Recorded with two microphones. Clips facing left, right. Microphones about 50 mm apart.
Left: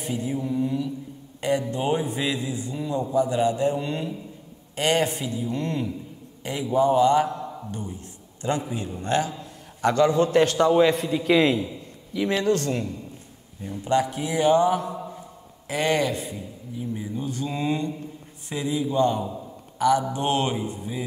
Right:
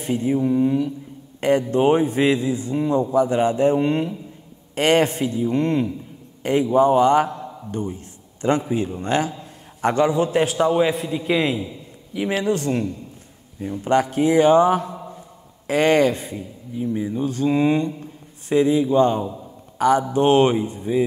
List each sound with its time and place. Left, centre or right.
0.0 s a man's voice: right; by 11.7 s centre
12.1 s a man's voice: centre
13.6 s a man's voice: right